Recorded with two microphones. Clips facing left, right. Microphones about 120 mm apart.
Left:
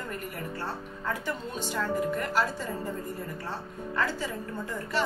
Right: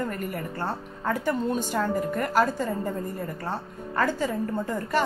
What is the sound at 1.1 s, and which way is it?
A woman's voice, 45° right (ahead or behind).